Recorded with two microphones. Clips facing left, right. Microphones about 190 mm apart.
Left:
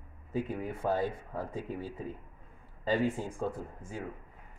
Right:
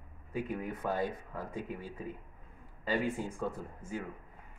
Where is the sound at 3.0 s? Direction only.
30° left (ahead or behind).